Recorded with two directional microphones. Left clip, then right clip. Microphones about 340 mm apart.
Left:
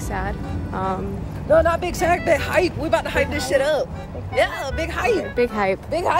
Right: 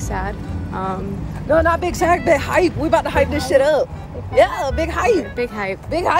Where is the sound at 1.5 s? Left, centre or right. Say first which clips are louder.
Right 1 dB; right.